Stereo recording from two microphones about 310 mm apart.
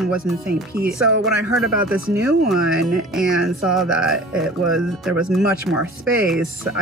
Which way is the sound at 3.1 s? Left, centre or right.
Centre.